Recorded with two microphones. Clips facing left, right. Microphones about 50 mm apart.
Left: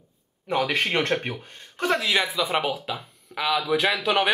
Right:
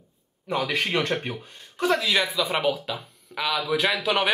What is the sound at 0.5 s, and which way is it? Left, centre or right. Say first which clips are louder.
Speech: left 2 dB; left.